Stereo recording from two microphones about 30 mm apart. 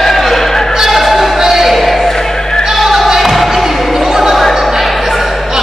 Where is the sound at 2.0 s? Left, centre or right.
Centre.